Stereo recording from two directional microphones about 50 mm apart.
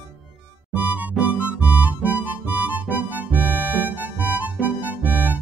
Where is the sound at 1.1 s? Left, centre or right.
Right.